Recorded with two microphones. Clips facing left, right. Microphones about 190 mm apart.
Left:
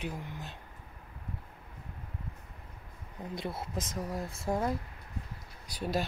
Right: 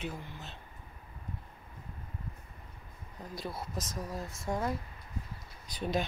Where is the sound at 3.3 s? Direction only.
25° left (ahead or behind).